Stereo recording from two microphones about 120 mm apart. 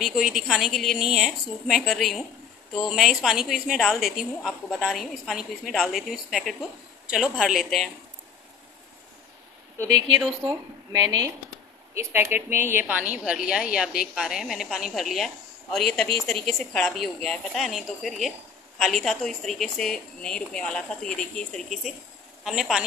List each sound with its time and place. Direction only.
0.0 s a woman's voice: 5° right (ahead or behind)
10.4 s speech: 35° right (ahead or behind)
11.9 s a woman's voice: 20° right (ahead or behind); by 22.8 s centre (ahead or behind)